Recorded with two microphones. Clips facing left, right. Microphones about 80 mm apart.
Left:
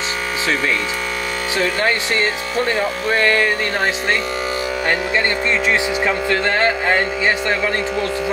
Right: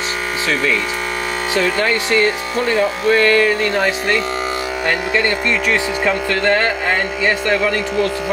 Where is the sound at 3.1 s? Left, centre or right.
Left.